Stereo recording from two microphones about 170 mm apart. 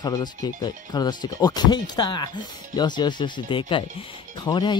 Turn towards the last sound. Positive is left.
turn(degrees=25)  # may be behind; listen again after turning